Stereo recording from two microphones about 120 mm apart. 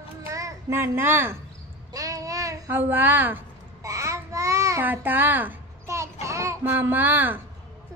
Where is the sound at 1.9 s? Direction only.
30° right (ahead or behind).